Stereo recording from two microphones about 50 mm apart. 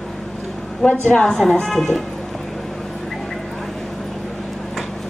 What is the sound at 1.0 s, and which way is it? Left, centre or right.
Speech, left.